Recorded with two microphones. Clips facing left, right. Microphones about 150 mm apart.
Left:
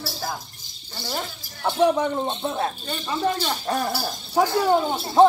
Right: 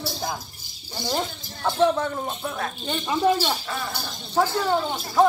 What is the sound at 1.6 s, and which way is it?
Speech, 15° left (ahead or behind).